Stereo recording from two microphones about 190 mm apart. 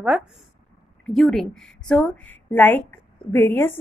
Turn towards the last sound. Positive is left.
turn(degrees=10)  # may be behind; listen again after turning